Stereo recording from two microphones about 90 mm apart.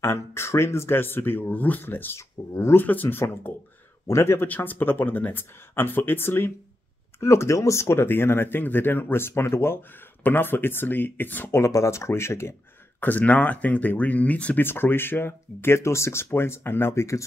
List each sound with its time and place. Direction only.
0.0 s speech: 30° left (ahead or behind)
11.6 s speech: 35° left (ahead or behind)
13.0 s speech: 20° left (ahead or behind)